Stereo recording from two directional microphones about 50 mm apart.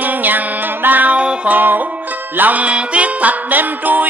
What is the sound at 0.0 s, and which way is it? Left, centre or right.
Music, right.